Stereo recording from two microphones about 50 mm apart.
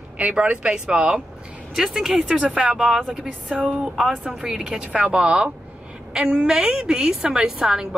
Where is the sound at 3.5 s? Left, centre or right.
Right.